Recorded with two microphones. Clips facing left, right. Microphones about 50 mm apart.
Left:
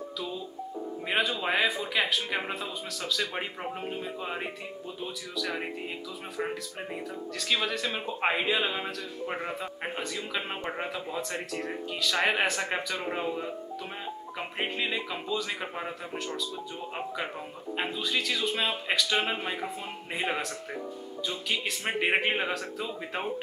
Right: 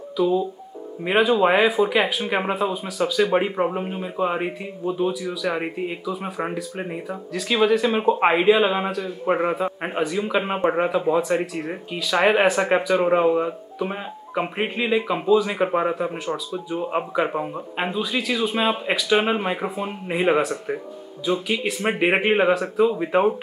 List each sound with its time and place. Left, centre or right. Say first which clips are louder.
0.2 s a man's voice: right 18 dB; centre
7.3 s speech: right 11 dB; centre
8.0 s a man's voice: right 11 dB; right
9.2 s a man's voice: right 13 dB; right
9.6 s a man's voice: right 10 dB; centre
11.1 s a man's voice: right 11 dB; centre
15.6 s a man's voice: right 14 dB; right
15.9 s speech: right 10 dB; centre
22.8 s a man's voice: right 16 dB; right